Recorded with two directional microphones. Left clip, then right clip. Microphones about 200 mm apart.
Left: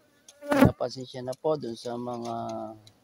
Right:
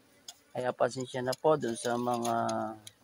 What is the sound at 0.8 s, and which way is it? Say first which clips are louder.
Speech: right 2 dB; centre (ahead or behind).